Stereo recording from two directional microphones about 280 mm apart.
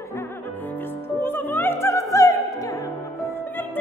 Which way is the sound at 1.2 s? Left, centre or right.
Centre.